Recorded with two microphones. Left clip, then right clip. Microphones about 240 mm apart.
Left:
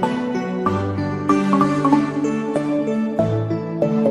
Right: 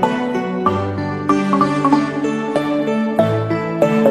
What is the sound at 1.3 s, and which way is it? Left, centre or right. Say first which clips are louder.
Music: right 2 dB; centre.